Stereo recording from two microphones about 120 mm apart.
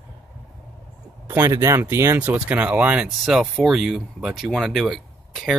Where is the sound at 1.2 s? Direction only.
20° right (ahead or behind).